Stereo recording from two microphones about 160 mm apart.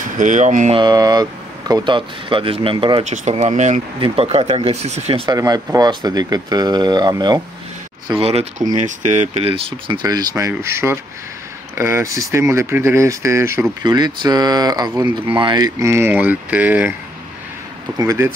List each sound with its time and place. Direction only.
0.0 s speech: 50° right (ahead or behind)
0.7 s speech: 25° right (ahead or behind); by 3.8 s 50° right (ahead or behind)
4.0 s speech: 35° right (ahead or behind)
5.3 s speech: 25° right (ahead or behind)
8.2 s speech: 40° right (ahead or behind); by 16.9 s 10° right (ahead or behind)
17.9 s speech: 20° right (ahead or behind)